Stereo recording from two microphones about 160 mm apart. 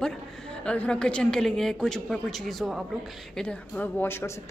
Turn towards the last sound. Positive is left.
turn(degrees=15)  # may be behind; listen again after turning